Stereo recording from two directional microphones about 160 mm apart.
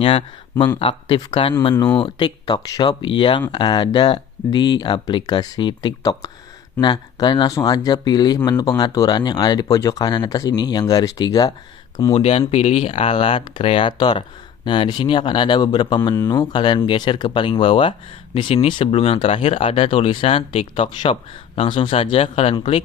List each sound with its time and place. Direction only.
0.0 s speech: 35° left (ahead or behind)
12.1 s speech: 40° left (ahead or behind)